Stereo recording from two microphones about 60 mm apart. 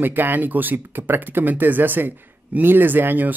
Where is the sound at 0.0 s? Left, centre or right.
Right.